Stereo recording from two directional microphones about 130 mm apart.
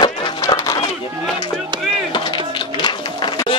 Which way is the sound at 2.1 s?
40° left (ahead or behind).